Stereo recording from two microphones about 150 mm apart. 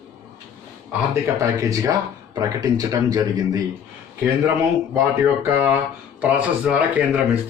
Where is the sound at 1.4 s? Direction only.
20° right (ahead or behind).